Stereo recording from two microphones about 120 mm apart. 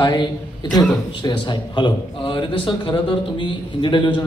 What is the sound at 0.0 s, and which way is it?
A man's voice, 35° left (ahead or behind).